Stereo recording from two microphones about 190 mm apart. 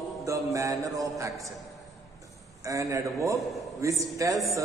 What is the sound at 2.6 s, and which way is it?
A man's voice, 15° right (ahead or behind).